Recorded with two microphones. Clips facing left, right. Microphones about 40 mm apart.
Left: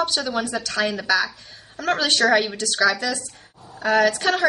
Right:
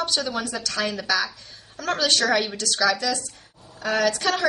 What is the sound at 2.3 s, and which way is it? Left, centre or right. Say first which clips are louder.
Speech: left 3 dB; centre.